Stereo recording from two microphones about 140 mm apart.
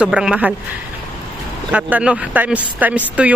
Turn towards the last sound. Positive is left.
turn(degrees=-10)  # may be behind; listen again after turning